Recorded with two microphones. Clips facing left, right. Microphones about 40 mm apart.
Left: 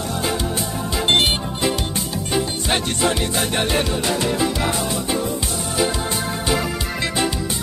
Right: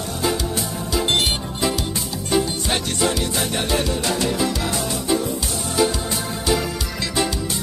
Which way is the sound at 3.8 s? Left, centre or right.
Centre.